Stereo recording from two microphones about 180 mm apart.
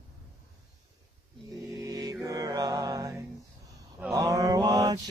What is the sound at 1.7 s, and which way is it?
Mantra, 20° right (ahead or behind).